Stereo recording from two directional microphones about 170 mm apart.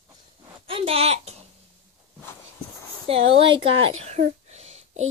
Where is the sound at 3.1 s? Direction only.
35° right (ahead or behind).